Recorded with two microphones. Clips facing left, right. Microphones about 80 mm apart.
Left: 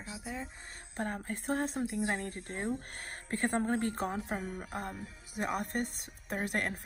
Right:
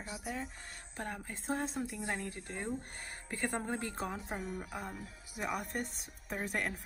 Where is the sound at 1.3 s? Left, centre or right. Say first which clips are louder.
Left 2 dB; left.